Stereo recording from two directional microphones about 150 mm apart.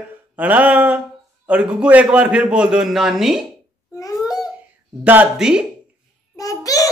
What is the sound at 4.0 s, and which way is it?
Babbling, 25° left (ahead or behind).